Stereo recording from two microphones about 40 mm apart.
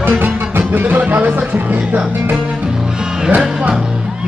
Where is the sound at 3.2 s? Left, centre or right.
Centre.